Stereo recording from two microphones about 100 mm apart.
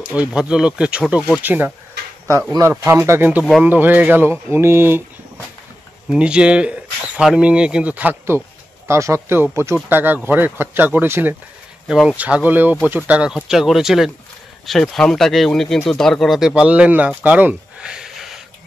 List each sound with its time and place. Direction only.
0.1 s speech: 10° right (ahead or behind)
1.4 s speech: 20° right (ahead or behind)
2.8 s speech: 25° right (ahead or behind)
6.0 s speech: 10° right (ahead or behind)
8.8 s speech: 30° right (ahead or behind); by 18.4 s 5° right (ahead or behind)